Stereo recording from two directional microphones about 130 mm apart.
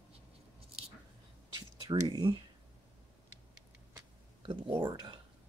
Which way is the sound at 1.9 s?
30° right (ahead or behind).